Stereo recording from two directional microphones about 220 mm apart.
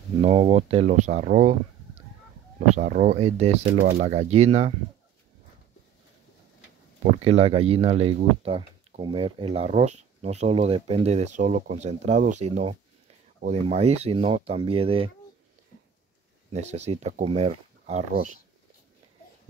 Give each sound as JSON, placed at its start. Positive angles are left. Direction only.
{"t": 0.2, "sound": "speech", "side_deg": -25}
{"t": 2.7, "sound": "speech", "side_deg": -35}
{"t": 7.0, "sound": "speech", "side_deg": -30}
{"t": 16.5, "sound": "speech", "side_deg": -30}